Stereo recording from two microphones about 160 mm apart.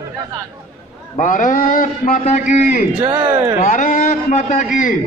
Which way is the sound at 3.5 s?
55° left (ahead or behind).